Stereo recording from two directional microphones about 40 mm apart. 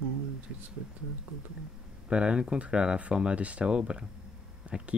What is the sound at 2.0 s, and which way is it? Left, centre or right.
Speech, right.